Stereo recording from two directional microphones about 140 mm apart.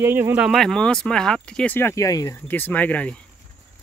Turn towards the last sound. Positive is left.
turn(degrees=10)  # may be behind; listen again after turning